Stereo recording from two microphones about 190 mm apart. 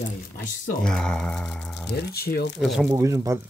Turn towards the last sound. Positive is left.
turn(degrees=-15)  # may be behind; listen again after turning